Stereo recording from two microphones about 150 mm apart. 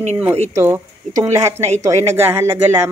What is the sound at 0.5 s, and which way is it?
Speech, 15° right (ahead or behind).